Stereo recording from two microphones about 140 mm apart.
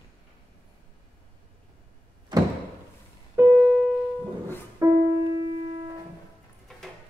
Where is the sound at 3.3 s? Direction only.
15° right (ahead or behind).